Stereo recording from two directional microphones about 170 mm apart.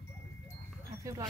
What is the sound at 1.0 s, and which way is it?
Speech, 20° right (ahead or behind).